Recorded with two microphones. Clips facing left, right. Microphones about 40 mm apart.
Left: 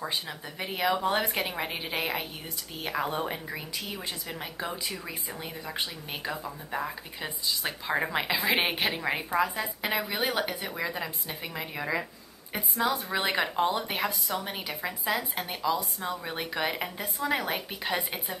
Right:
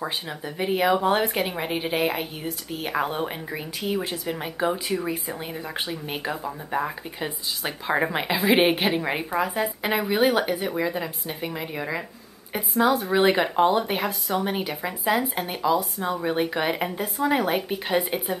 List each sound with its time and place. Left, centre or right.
0.0 s a woman's voice: centre